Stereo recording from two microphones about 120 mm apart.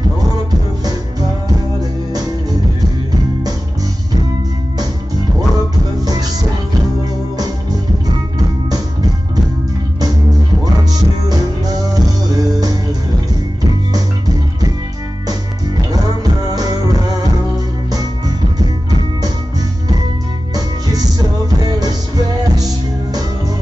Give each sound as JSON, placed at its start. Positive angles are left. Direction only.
{"t": 10.6, "sound": "music", "side_deg": -30}
{"t": 15.9, "sound": "music", "side_deg": -35}
{"t": 20.5, "sound": "music", "side_deg": -35}